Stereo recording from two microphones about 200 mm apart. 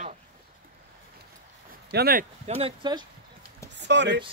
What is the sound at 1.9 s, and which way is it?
Speech, 50° right (ahead or behind).